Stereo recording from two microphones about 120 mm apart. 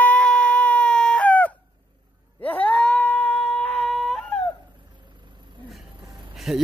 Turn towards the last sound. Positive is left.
turn(degrees=0)  # may be behind; listen again after turning